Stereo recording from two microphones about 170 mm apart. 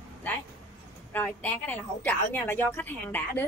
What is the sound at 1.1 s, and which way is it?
A woman's voice, 10° left (ahead or behind).